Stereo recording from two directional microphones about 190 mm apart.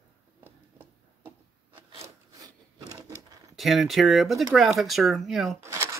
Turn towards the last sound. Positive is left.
turn(degrees=-15)  # may be behind; listen again after turning